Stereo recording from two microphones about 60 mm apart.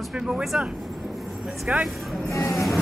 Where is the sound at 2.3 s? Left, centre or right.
Left.